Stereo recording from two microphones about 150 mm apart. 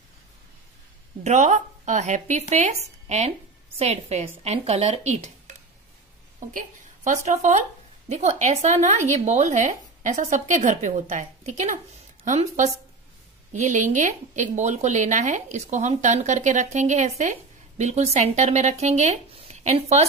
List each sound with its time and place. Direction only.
1.2 s a woman's voice: 50° right (ahead or behind)
7.1 s a woman's voice: 50° right (ahead or behind)